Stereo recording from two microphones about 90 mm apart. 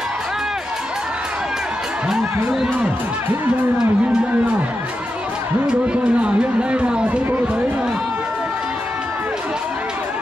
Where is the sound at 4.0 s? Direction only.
10° right (ahead or behind).